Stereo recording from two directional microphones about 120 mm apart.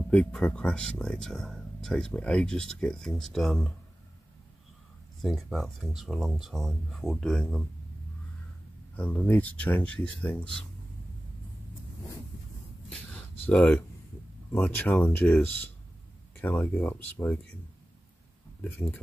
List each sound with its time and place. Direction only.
0.1 s speech: 5° left (ahead or behind)
5.2 s speech: centre (ahead or behind)
8.9 s speech: 10° left (ahead or behind)
12.9 s a sound: 10° left (ahead or behind)
14.5 s speech: 10° left (ahead or behind)
18.6 s speech: 10° left (ahead or behind)